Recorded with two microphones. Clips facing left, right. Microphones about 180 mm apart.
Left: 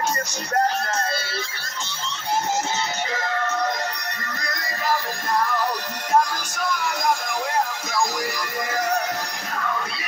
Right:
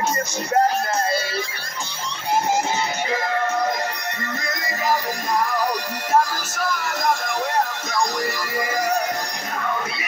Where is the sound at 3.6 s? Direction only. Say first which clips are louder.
Right 2 dB; 30° right (ahead or behind).